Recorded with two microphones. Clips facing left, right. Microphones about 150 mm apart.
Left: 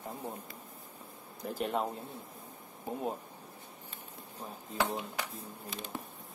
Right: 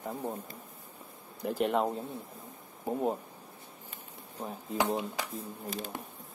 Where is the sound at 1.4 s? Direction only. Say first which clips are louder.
Right 5 dB; 10° right (ahead or behind).